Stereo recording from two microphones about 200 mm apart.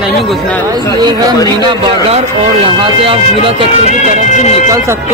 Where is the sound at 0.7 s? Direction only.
20° right (ahead or behind).